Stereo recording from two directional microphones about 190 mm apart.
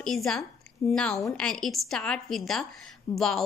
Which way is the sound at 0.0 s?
5° left (ahead or behind).